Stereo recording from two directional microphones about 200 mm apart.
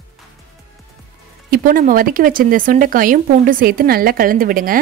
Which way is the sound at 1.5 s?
45° right (ahead or behind).